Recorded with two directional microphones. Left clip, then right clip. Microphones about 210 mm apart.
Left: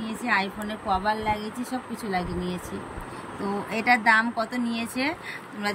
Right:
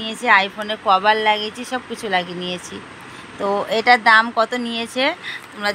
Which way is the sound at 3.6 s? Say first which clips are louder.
Right 7 dB; 5° left (ahead or behind).